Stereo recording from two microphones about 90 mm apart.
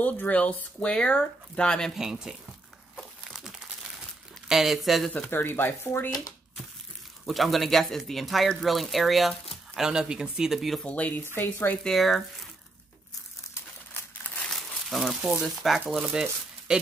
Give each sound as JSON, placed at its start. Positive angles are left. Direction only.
{"t": 0.0, "sound": "speech", "side_deg": 15}
{"t": 1.9, "sound": "speech", "side_deg": -5}
{"t": 3.0, "sound": "crumpling", "side_deg": 0}
{"t": 4.5, "sound": "speech", "side_deg": -5}
{"t": 5.3, "sound": "speech", "side_deg": 25}
{"t": 7.2, "sound": "speech", "side_deg": 0}
{"t": 10.9, "sound": "speech", "side_deg": 15}
{"t": 11.8, "sound": "speech", "side_deg": 0}
{"t": 14.2, "sound": "crumpling", "side_deg": 20}
{"t": 14.5, "sound": "crumpling", "side_deg": 0}
{"t": 15.4, "sound": "speech", "side_deg": 0}